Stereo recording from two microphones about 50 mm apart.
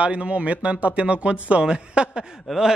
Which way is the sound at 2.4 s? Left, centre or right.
Centre.